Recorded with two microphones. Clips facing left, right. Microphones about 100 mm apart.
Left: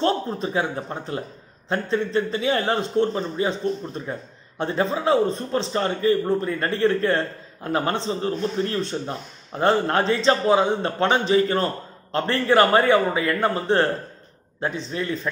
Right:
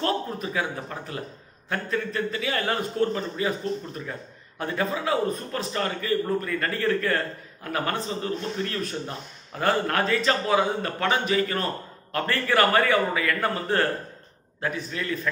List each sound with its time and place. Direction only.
0.0 s a man's voice: 30° left (ahead or behind)